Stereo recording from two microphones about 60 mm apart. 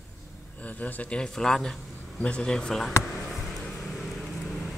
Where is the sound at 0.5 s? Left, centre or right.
Left.